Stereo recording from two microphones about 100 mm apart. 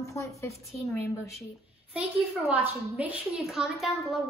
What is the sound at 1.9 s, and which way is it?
A woman's voice, 10° right (ahead or behind).